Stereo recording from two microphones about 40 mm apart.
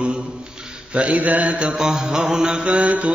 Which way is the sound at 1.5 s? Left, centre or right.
Centre.